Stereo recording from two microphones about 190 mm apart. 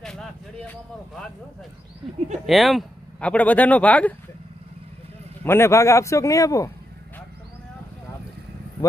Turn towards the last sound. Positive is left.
turn(degrees=15)  # may be behind; listen again after turning